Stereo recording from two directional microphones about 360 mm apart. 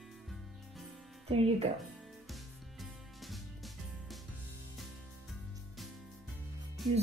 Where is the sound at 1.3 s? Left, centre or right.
Centre.